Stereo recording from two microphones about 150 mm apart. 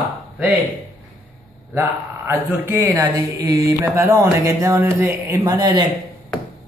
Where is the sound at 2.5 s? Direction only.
15° right (ahead or behind).